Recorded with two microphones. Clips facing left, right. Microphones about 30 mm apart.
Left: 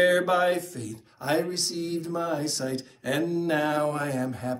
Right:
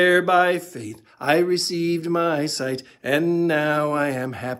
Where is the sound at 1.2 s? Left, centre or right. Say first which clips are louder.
Right 8 dB; right.